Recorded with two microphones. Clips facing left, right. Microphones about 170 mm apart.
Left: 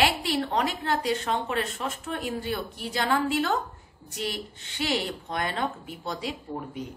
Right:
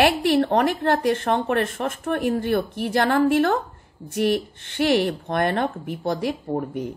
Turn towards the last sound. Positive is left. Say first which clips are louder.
# right 8 dB
turn(degrees=-50)  # may be behind; listen again after turning